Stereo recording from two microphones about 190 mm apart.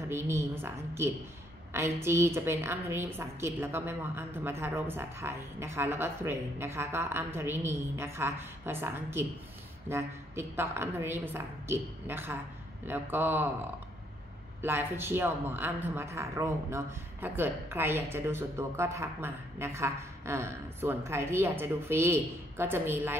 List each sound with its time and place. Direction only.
0.1 s a woman's voice: 15° right (ahead or behind)
14.6 s a woman's voice: 10° right (ahead or behind)